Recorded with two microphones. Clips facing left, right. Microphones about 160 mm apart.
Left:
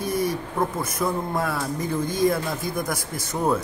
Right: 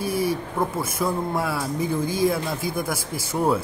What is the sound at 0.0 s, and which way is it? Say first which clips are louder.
Speech: right 1 dB; 5° right (ahead or behind).